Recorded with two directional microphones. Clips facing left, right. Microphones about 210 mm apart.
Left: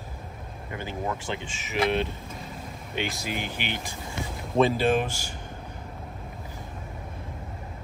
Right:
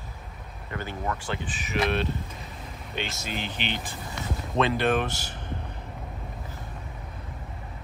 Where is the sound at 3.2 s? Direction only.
15° left (ahead or behind).